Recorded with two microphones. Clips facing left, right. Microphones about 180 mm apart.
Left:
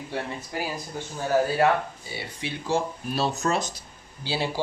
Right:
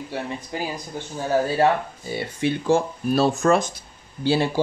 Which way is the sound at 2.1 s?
50° right (ahead or behind).